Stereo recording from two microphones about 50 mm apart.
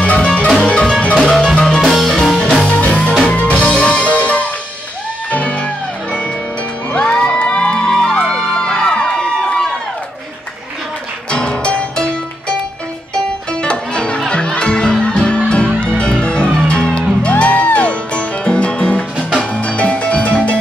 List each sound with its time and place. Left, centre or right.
0.0 s music: left; by 2.6 s centre
2.6 s music: left
6.9 s music: centre
11.2 s music: centre